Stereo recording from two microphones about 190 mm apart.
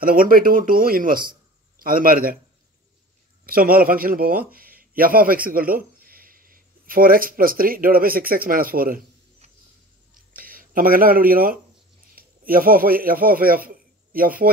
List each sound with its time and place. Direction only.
0.0 s speech: 50° right (ahead or behind)
3.4 s a man's voice: 50° right (ahead or behind)
10.1 s a sound: 50° right (ahead or behind)
12.2 s a man's voice: 50° right (ahead or behind)